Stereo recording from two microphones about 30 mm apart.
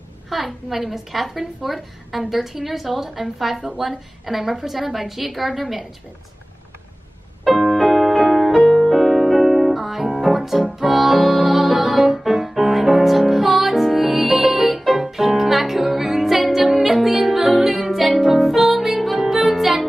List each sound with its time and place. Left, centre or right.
0.3 s a woman's voice: centre
7.6 s music: centre
8.5 s music: left
8.9 s music: centre